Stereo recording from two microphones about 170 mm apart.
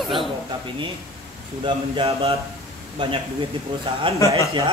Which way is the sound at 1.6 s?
30° right (ahead or behind).